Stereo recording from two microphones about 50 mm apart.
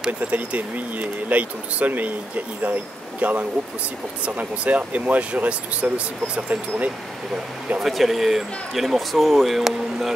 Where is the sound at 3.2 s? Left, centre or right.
Right.